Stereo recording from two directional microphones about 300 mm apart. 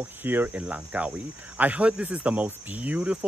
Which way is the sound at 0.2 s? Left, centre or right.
Centre.